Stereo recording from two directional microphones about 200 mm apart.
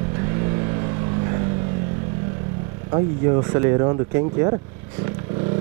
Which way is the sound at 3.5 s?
20° right (ahead or behind).